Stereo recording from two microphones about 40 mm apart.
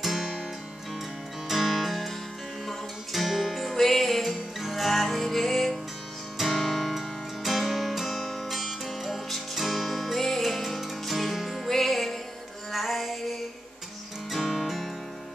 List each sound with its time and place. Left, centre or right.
0.0 s music: centre
1.5 s music: centre